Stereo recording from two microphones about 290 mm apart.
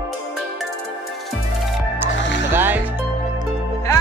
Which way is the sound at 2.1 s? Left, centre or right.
Left.